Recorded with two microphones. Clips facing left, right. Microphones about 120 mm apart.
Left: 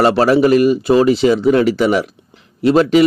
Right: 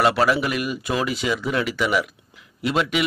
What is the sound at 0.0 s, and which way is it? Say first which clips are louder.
A man's voice: left 8 dB; 30° left (ahead or behind).